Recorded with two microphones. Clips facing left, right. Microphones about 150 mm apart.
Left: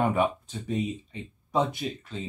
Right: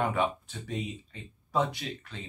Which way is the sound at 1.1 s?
20° left (ahead or behind).